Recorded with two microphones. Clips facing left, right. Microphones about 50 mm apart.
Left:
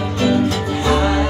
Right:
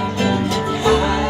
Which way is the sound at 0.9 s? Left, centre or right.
Centre.